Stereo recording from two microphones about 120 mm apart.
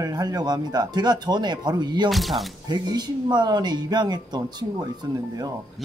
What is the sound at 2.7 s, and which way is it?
Speech, 35° right (ahead or behind).